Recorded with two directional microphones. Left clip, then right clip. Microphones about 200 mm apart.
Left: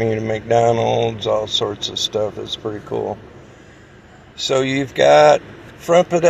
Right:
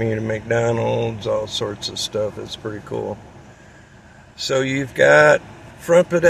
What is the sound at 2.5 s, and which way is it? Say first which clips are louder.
Speech: left 4 dB; 15° right (ahead or behind).